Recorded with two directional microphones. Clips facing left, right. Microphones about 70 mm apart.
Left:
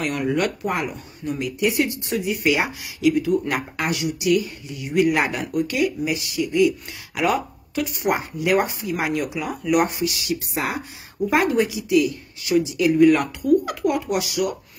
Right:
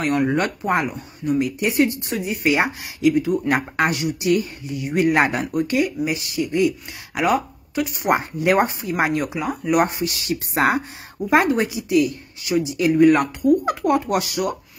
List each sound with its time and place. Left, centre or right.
0.0 s speech: right
0.8 s speech: right
11.3 s speech: right
13.8 s speech: right